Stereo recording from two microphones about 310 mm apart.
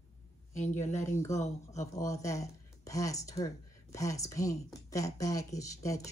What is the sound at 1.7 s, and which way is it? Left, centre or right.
Speech, centre.